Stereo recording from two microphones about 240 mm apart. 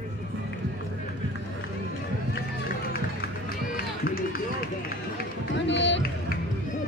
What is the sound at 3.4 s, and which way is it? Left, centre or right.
Run, left.